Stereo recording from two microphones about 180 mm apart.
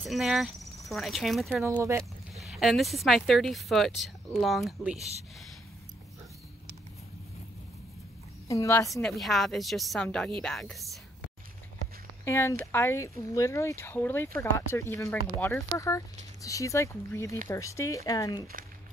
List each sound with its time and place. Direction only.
0.0 s speech: centre (ahead or behind)
1.6 s speech: 15° right (ahead or behind)
2.3 s speech: centre (ahead or behind)
8.5 s speech: 15° left (ahead or behind)
9.0 s speech: centre (ahead or behind)
12.3 s speech: 15° left (ahead or behind)